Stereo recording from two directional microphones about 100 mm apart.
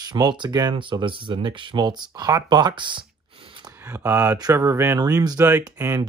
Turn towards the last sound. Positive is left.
turn(degrees=-25)  # may be behind; listen again after turning